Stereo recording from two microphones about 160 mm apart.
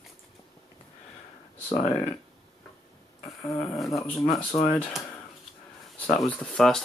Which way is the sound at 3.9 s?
20° left (ahead or behind).